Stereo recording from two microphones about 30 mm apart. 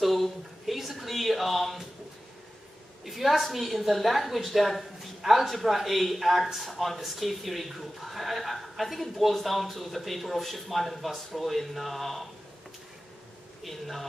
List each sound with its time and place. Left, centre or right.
0.0 s a sound: centre
0.9 s a woman's voice: centre
3.1 s a woman's voice: centre
13.7 s a woman's voice: centre